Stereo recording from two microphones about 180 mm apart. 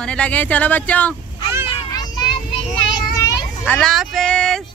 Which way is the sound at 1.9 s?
20° left (ahead or behind).